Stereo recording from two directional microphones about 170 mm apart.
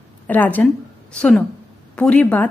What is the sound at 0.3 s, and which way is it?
A woman's voice, 10° left (ahead or behind).